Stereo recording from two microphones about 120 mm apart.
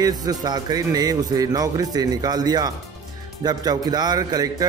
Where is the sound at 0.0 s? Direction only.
35° right (ahead or behind).